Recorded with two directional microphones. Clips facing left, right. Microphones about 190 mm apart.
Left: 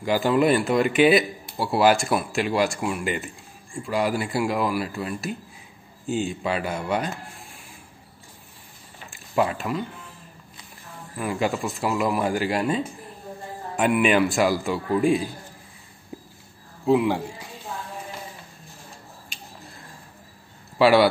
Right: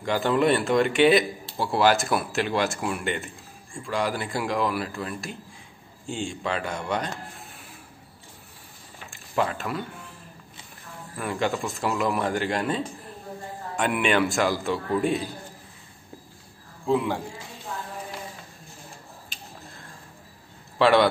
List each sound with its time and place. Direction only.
0.0 s speech: 5° left (ahead or behind)
6.0 s speech: 5° left (ahead or behind)
9.3 s speech: 10° left (ahead or behind)
11.1 s speech: 5° left (ahead or behind)
16.8 s speech: 20° left (ahead or behind)
20.7 s speech: 5° left (ahead or behind)